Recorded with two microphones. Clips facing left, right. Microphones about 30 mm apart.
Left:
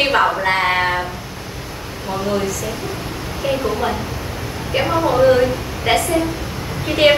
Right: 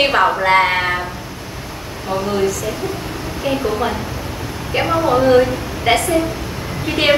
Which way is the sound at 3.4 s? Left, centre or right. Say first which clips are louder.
Right 1 dB; centre.